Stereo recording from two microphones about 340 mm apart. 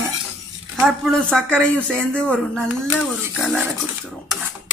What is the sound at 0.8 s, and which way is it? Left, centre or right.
Speech, centre.